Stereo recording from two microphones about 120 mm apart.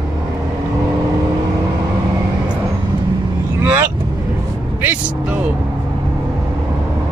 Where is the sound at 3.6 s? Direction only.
15° right (ahead or behind).